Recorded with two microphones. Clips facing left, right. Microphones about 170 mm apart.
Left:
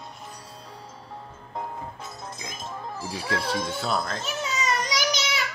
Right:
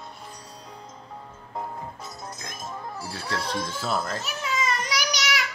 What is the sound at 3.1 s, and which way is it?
Speech, 15° left (ahead or behind).